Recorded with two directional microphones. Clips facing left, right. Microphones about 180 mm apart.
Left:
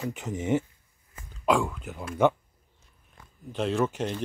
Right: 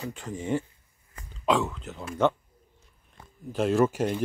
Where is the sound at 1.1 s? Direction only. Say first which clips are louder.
Left 1 dB; 5° left (ahead or behind).